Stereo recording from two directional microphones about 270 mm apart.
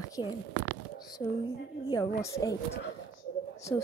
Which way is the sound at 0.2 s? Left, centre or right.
Centre.